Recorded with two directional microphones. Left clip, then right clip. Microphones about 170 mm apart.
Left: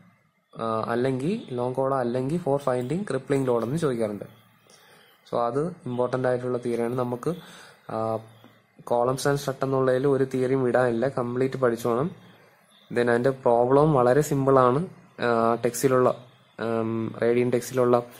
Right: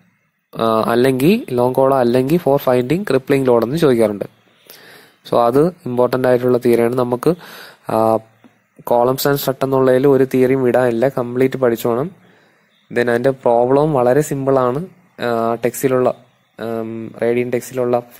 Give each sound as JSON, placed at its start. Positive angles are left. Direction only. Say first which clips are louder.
{"t": 0.5, "sound": "speech", "louder": "right 12 dB", "side_deg": -45}
{"t": 16.8, "sound": "speech", "louder": "right 2 dB", "side_deg": 0}
{"t": 17.1, "sound": "speech", "louder": "right 6 dB", "side_deg": -15}